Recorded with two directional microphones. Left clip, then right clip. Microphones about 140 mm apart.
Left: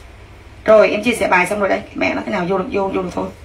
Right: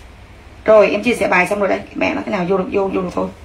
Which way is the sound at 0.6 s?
20° left (ahead or behind).